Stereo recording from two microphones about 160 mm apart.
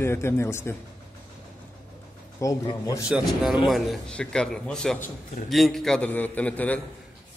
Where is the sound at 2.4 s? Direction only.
20° left (ahead or behind).